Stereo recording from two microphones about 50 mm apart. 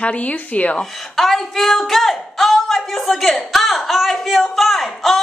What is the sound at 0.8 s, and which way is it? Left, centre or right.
Speech, centre.